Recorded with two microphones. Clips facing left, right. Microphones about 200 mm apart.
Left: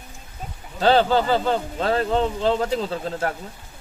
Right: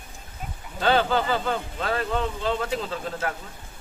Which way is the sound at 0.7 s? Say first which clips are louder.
Left 4 dB; 35° left (ahead or behind).